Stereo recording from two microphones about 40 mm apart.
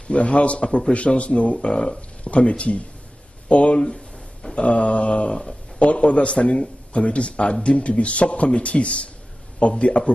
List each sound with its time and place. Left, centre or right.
0.1 s speech: left
2.0 s speech: left
3.8 s a sound: centre
4.6 s speech: left